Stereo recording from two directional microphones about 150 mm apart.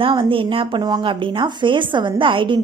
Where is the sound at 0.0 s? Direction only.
35° right (ahead or behind).